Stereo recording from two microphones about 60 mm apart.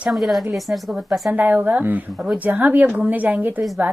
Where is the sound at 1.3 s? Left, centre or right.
Right.